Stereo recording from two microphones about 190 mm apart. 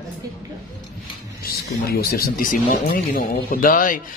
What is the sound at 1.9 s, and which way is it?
Speech, 55° left (ahead or behind).